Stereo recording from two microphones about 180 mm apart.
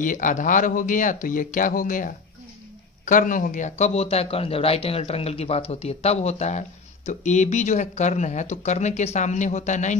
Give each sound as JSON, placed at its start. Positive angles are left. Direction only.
{"t": 0.0, "sound": "speech", "side_deg": 45}